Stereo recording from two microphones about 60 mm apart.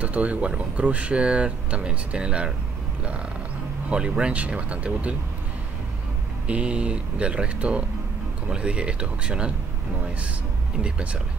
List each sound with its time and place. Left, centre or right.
0.0 s speech: right
3.9 s speech: centre
6.4 s speech: centre